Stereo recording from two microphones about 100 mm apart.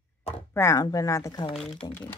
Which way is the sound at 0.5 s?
30° left (ahead or behind).